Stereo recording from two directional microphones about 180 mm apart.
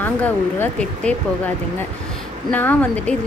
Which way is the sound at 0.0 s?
10° left (ahead or behind).